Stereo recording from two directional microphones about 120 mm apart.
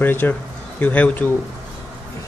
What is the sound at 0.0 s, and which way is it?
Speech, 15° left (ahead or behind).